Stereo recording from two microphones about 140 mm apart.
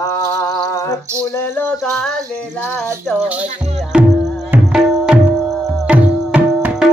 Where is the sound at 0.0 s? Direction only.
20° left (ahead or behind).